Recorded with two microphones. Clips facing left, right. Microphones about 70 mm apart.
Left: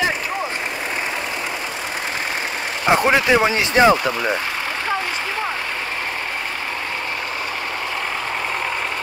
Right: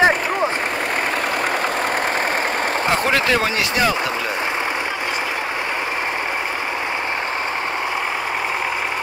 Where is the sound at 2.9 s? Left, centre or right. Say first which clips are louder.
Left 5 dB; centre.